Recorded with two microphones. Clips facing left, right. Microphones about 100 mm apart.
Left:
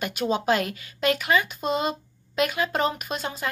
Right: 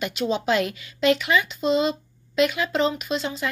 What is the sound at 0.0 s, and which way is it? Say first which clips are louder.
A woman's voice: even; 45° left (ahead or behind).